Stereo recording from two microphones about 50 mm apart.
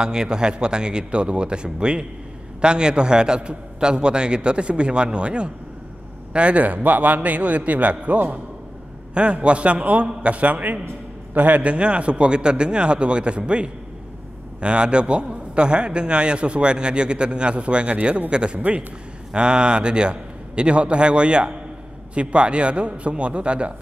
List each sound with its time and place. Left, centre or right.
0.0 s a man's voice: centre